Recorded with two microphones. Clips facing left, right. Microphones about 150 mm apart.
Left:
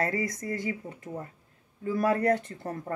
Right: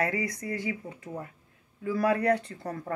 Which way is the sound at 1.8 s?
25° left (ahead or behind).